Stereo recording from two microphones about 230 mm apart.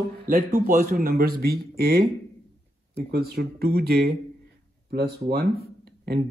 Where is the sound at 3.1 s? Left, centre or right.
Right.